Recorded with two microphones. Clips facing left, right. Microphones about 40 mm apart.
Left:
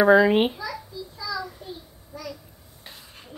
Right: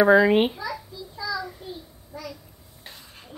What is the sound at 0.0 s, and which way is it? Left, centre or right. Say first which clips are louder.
Speech: even; centre.